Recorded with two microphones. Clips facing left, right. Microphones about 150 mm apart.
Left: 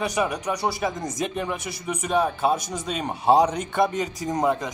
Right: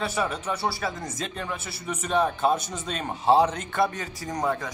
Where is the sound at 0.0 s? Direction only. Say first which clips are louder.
Left 3 dB; 15° left (ahead or behind).